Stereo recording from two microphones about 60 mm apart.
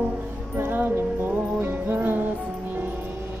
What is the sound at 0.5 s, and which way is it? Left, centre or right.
Music, right.